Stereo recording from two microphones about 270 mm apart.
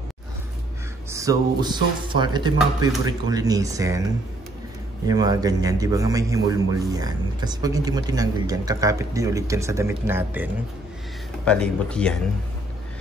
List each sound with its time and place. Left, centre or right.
1.1 s a man's voice: centre
5.0 s a man's voice: centre
11.4 s speech: centre